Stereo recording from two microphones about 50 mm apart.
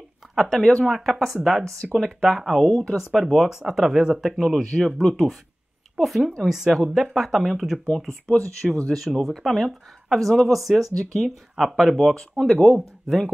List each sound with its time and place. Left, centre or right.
0.4 s speech: centre
0.8 s speech: centre
1.6 s speech: centre
2.1 s speech: centre
4.3 s speech: centre
5.9 s speech: centre
8.4 s speech: centre
8.9 s speech: centre